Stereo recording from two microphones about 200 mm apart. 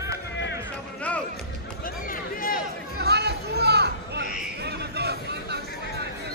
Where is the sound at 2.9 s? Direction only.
55° right (ahead or behind).